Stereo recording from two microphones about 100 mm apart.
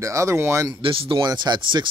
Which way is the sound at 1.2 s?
45° right (ahead or behind).